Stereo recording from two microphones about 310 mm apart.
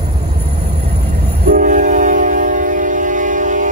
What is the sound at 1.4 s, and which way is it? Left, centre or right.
Train, right.